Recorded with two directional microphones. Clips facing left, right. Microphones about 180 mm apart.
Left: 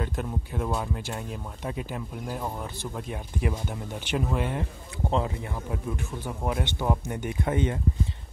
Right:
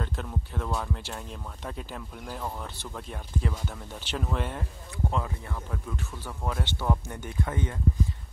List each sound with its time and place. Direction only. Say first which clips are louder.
0.0 s speech: left 3 dB; 10° left (ahead or behind)
5.1 s speech: left 8 dB; 20° left (ahead or behind)